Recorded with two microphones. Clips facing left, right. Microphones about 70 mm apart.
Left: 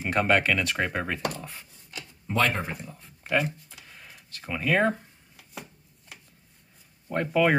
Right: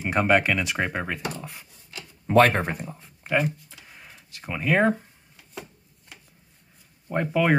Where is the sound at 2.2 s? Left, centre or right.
Right.